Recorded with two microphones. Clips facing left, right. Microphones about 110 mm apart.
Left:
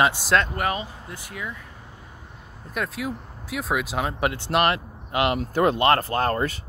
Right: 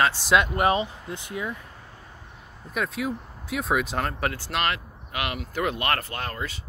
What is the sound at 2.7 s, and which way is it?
Speech, centre (ahead or behind).